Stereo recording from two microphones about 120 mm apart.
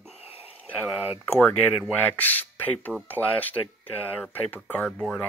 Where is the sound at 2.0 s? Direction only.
15° left (ahead or behind).